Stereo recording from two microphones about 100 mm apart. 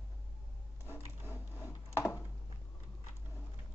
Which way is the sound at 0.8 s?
25° left (ahead or behind).